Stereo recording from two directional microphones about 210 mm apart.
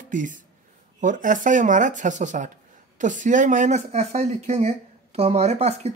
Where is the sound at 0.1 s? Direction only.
40° right (ahead or behind).